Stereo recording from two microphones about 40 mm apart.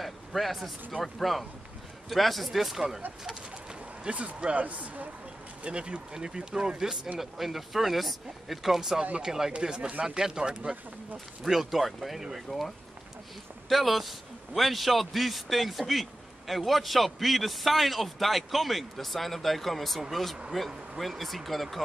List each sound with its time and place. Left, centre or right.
0.0 s a sound: centre
1.0 s a man's voice: centre
4.1 s speech: right
5.6 s speech: right
7.2 s a man's voice: centre; by 10.0 s right
10.0 s speech: centre
11.4 s a man's voice: centre
12.4 s a man's voice: centre